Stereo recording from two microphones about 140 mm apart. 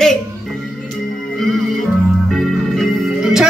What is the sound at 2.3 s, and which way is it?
Music, centre (ahead or behind).